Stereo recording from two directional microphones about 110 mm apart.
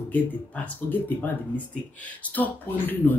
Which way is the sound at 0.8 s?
20° left (ahead or behind).